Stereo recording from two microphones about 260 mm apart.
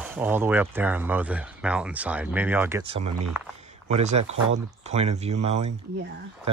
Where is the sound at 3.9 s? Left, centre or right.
Right.